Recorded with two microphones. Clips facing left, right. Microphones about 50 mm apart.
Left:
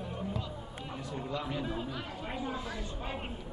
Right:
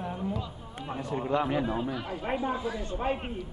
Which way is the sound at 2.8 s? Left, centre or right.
Right.